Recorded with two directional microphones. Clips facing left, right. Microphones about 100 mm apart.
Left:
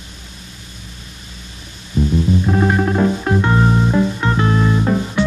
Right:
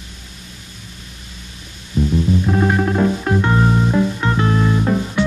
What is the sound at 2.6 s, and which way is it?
Music, 25° left (ahead or behind).